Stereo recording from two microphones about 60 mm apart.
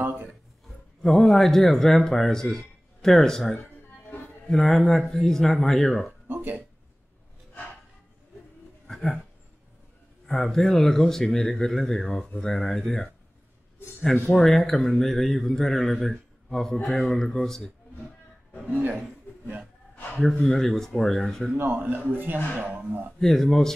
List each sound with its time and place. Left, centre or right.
0.0 s a sound: right
1.0 s a man's voice: centre
4.1 s music: left
4.5 s speech: centre
6.2 s speech: right
8.8 s a sound: centre
10.2 s a man's voice: centre
14.3 s a man's voice: centre
18.7 s a man's voice: right
20.4 s speech: centre
21.5 s a man's voice: right
23.2 s a man's voice: centre